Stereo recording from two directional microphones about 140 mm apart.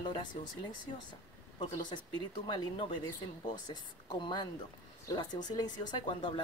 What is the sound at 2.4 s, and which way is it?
Speech, 35° left (ahead or behind).